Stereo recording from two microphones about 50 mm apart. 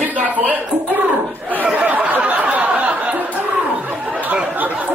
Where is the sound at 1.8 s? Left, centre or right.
Right.